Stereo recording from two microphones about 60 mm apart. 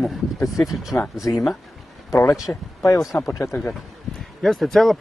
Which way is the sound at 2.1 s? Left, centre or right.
Left.